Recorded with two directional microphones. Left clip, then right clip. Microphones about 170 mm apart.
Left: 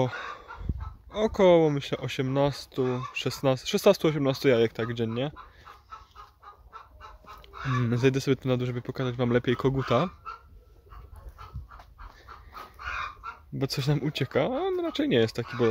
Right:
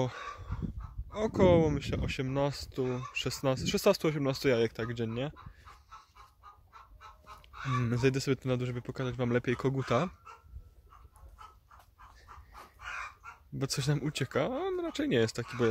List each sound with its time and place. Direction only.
1.1 s speech: 15° left (ahead or behind)
6.7 s chicken: 50° left (ahead or behind)
7.8 s speech: 10° left (ahead or behind)
12.3 s dog: 60° left (ahead or behind)
13.6 s speech: 5° left (ahead or behind)